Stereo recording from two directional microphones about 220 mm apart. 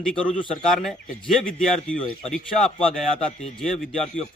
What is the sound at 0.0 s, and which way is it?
A man's voice, 5° left (ahead or behind).